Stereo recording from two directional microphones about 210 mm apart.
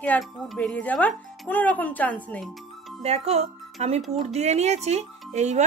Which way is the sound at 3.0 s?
30° right (ahead or behind).